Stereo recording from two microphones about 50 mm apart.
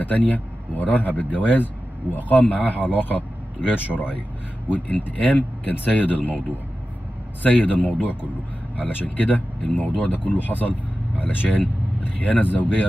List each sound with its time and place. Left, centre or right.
0.0 s a man's voice: left
3.8 s speech: right
4.6 s speech: left